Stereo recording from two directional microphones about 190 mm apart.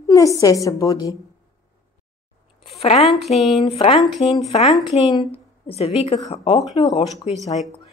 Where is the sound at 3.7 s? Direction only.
30° left (ahead or behind).